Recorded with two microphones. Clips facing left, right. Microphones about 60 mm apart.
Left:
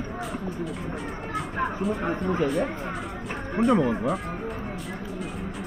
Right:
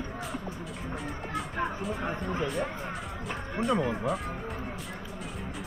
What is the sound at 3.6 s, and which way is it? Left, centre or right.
Speech, left.